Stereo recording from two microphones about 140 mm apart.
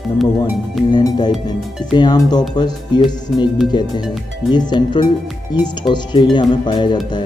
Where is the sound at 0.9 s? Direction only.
30° left (ahead or behind).